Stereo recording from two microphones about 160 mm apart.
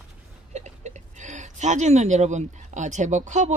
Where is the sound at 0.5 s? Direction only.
45° right (ahead or behind).